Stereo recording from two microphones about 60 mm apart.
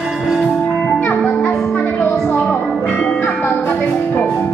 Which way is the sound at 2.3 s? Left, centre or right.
Centre.